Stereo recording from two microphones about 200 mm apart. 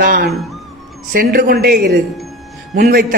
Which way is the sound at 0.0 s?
45° right (ahead or behind).